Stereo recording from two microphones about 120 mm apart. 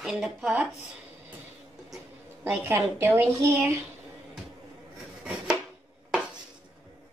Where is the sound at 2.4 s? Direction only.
20° right (ahead or behind).